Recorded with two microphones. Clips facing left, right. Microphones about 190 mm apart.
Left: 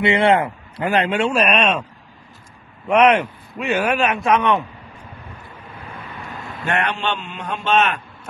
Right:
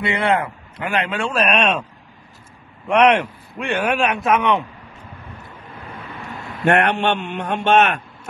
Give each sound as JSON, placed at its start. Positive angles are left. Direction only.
{"t": 0.0, "sound": "a man's voice", "side_deg": 25}
{"t": 1.3, "sound": "speech", "side_deg": 10}
{"t": 2.9, "sound": "speech", "side_deg": 5}
{"t": 5.5, "sound": "vehicle", "side_deg": 10}
{"t": 6.6, "sound": "a man's voice", "side_deg": -65}